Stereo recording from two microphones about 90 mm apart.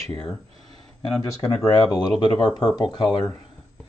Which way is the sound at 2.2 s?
55° left (ahead or behind).